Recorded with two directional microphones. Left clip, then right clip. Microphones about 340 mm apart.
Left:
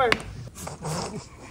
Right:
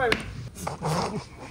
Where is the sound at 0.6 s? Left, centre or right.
Centre.